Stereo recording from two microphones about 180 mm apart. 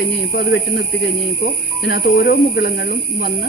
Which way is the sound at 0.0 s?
60° left (ahead or behind).